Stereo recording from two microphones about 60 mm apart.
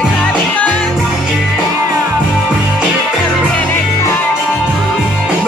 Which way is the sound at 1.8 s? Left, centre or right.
Right.